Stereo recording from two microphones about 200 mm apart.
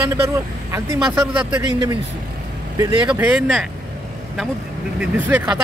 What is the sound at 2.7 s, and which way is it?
Speech, 20° right (ahead or behind).